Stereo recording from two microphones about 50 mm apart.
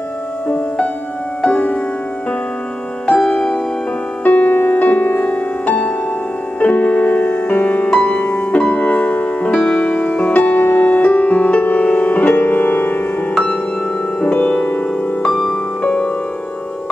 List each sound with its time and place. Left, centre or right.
1.4 s music: left
3.2 s music: centre
4.2 s music: left
9.5 s music: centre
10.3 s music: left
14.2 s music: left
15.2 s music: centre
15.8 s music: left